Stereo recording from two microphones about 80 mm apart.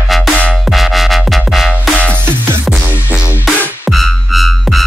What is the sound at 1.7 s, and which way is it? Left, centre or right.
Music, centre.